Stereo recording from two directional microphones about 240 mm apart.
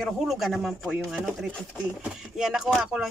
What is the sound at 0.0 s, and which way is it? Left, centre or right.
Speech, centre.